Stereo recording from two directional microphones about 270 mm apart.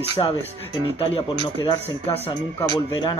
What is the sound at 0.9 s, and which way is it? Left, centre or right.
Speech, centre.